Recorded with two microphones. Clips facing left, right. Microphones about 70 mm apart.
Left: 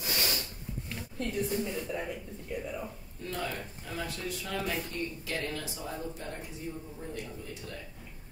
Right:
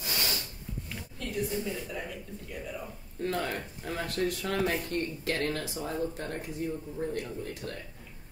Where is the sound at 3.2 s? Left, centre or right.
Right.